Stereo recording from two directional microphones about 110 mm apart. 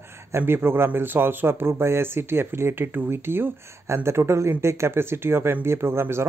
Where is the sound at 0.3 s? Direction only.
20° right (ahead or behind).